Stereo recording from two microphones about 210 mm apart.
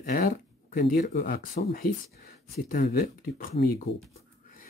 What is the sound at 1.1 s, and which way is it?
Speech, 45° left (ahead or behind).